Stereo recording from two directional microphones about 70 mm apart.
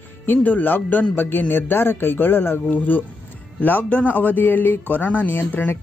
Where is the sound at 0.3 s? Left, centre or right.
Left.